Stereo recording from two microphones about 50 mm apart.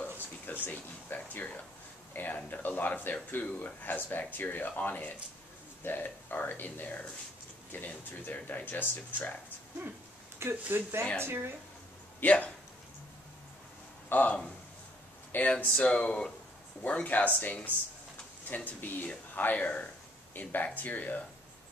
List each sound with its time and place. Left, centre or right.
0.0 s a sound: left
2.1 s speech: left
10.4 s a woman's voice: right
12.2 s speech: left
14.1 s speech: left
15.3 s speech: left
15.8 s speech: left